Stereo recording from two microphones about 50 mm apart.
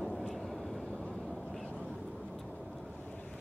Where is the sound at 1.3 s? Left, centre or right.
Centre.